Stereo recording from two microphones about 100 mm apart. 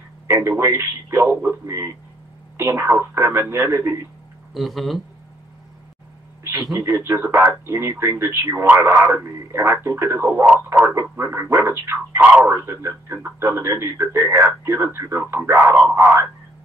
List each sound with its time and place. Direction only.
0.3 s speech: 25° right (ahead or behind)
4.6 s speech: centre (ahead or behind)
6.4 s speech: 35° right (ahead or behind); by 15.9 s 20° right (ahead or behind)